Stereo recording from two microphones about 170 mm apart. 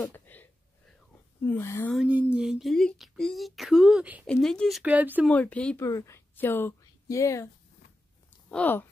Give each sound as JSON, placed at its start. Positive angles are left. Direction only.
{"t": 0.1, "sound": "a sound", "side_deg": 10}
{"t": 1.4, "sound": "speech", "side_deg": 15}
{"t": 2.0, "sound": "speech", "side_deg": -10}
{"t": 4.3, "sound": "speech", "side_deg": 5}
{"t": 5.2, "sound": "speech", "side_deg": 10}
{"t": 5.9, "sound": "a woman's voice", "side_deg": 20}
{"t": 8.5, "sound": "speech", "side_deg": 10}